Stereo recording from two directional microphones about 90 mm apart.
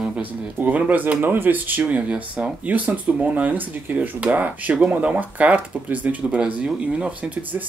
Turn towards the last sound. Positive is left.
turn(degrees=-20)  # may be behind; listen again after turning